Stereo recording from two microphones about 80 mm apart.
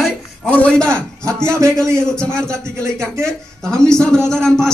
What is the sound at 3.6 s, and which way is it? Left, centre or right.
Speech, centre.